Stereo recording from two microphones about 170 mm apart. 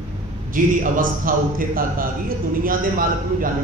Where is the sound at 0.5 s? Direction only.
50° right (ahead or behind).